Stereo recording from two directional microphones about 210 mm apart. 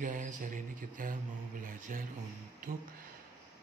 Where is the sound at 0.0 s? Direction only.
40° right (ahead or behind).